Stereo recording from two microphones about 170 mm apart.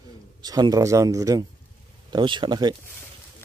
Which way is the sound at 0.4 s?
25° right (ahead or behind).